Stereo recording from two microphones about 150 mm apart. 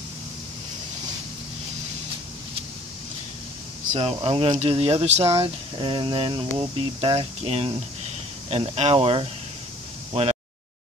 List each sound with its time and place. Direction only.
3.9 s speech: 40° right (ahead or behind)
5.8 s speech: 30° right (ahead or behind)